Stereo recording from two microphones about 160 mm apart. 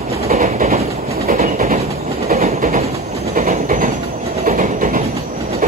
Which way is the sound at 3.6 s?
60° right (ahead or behind).